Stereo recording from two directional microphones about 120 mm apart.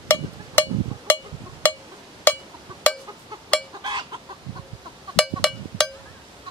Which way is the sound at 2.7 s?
40° right (ahead or behind).